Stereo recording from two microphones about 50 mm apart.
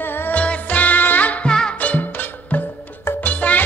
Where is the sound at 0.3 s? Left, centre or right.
Left.